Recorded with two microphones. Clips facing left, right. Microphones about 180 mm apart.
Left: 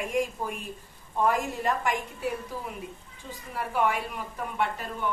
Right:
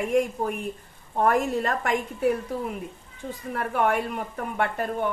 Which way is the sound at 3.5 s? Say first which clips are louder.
Right 3 dB; 60° right (ahead or behind).